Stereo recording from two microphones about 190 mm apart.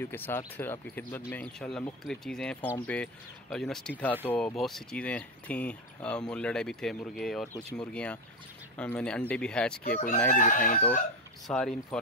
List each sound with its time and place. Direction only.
0.0 s speech: 10° left (ahead or behind)
9.9 s speech: 40° left (ahead or behind)
10.3 s chicken: 45° left (ahead or behind)
11.4 s speech: 5° left (ahead or behind)